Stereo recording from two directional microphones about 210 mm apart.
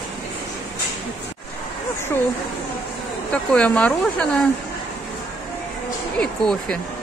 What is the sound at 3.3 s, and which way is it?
Speech, 5° left (ahead or behind).